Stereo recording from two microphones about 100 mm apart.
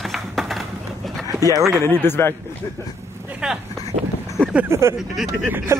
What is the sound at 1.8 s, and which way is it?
Speech, 20° left (ahead or behind).